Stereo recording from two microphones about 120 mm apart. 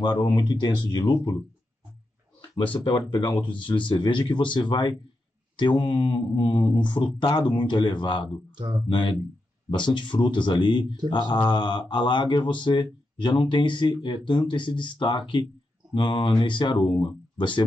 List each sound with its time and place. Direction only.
0.0 s speech: 40° left (ahead or behind)
2.7 s speech: 40° left (ahead or behind)